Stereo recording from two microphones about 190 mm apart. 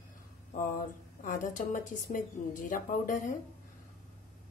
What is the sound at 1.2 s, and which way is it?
Speech, 40° left (ahead or behind).